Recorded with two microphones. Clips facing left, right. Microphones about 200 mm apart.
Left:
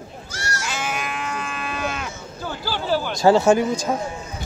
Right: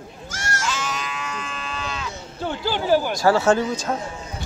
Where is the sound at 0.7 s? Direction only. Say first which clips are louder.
Left 1 dB; 55° left (ahead or behind).